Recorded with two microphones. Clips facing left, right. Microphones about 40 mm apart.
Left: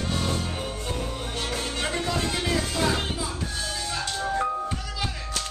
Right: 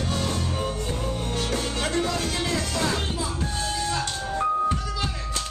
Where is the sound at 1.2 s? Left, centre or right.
Centre.